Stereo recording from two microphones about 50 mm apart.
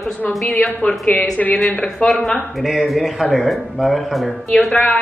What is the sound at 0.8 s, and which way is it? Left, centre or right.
A man's voice, left.